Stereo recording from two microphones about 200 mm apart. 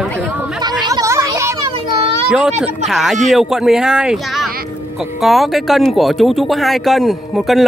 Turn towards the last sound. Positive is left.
turn(degrees=0)  # may be behind; listen again after turning